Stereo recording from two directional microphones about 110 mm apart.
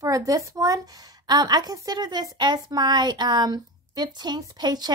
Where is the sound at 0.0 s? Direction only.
30° right (ahead or behind).